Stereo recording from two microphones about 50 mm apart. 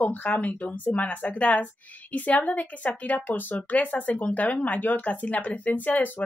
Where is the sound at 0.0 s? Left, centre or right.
Left.